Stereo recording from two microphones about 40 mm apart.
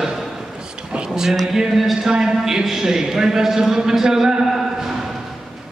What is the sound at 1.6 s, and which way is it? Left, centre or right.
A man's voice, centre.